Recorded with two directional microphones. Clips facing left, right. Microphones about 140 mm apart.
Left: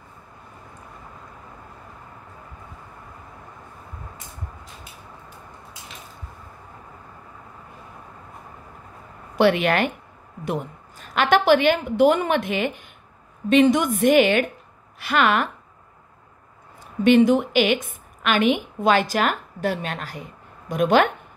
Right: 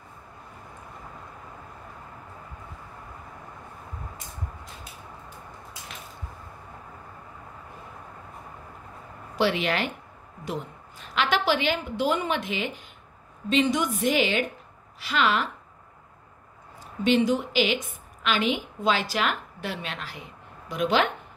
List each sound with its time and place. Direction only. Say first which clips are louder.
9.4 s a woman's voice: left 6 dB; 55° left (ahead or behind)
17.0 s a woman's voice: left 7 dB; 55° left (ahead or behind)